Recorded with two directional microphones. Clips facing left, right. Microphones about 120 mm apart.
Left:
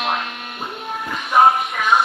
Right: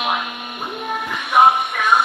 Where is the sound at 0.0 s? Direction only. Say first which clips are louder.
Right 1 dB; 10° right (ahead or behind).